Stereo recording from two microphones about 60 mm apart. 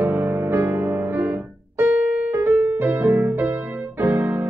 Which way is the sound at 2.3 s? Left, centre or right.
Right.